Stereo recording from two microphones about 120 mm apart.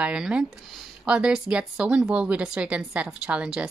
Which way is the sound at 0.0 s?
10° right (ahead or behind).